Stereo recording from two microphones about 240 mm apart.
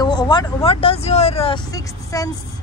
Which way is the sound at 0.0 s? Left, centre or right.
Centre.